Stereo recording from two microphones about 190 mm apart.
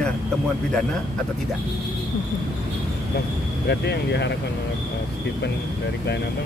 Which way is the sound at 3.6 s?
60° left (ahead or behind).